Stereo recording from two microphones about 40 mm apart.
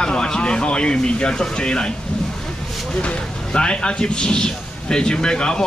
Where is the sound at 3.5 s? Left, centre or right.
Left.